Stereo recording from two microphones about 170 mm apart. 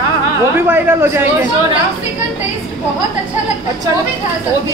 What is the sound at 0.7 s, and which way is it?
Speech, 10° right (ahead or behind).